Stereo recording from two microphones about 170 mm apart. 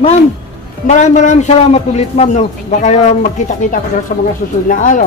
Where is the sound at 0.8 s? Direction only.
45° left (ahead or behind).